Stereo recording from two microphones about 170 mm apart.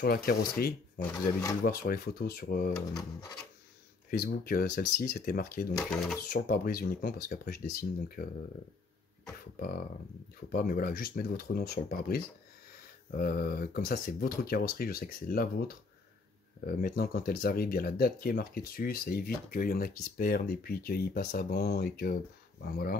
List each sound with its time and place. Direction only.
0.0 s speech: 60° left (ahead or behind)
2.9 s rub: 20° left (ahead or behind)
4.2 s speech: 60° left (ahead or behind)
5.8 s speech: 5° left (ahead or behind)
6.3 s speech: 60° left (ahead or behind)
9.6 s speech: 60° left (ahead or behind)